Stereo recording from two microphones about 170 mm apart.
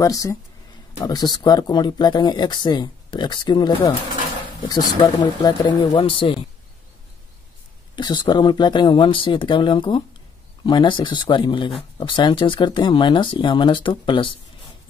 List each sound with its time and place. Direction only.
0.0 s speech: 20° left (ahead or behind)
7.9 s speech: 25° left (ahead or behind)